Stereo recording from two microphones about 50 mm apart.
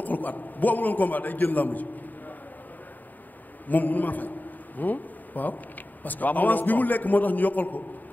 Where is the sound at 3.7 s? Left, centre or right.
Left.